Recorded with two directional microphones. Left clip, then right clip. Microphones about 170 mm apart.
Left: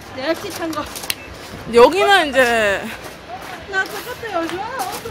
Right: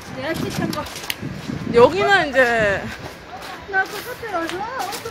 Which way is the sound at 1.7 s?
15° left (ahead or behind).